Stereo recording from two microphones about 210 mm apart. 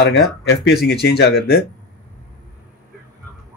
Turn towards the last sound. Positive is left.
turn(degrees=50)  # may be behind; listen again after turning